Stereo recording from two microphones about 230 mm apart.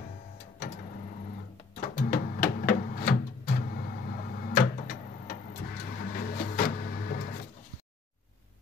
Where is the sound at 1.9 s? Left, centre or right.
Left.